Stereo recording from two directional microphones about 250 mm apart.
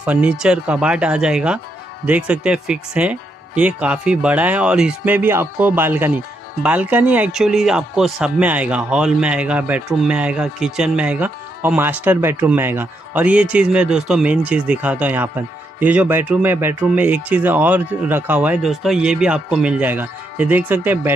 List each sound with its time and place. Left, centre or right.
0.0 s speech: centre